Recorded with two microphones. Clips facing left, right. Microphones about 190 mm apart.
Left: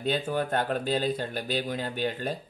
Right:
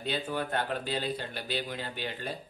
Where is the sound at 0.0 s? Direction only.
50° left (ahead or behind).